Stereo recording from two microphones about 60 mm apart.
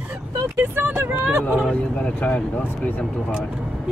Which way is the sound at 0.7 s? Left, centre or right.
Right.